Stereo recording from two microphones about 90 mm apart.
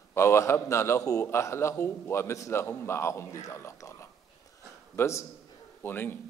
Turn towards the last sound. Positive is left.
turn(degrees=25)  # may be behind; listen again after turning